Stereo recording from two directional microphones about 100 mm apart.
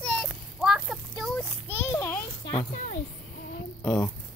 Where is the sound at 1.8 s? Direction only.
20° left (ahead or behind).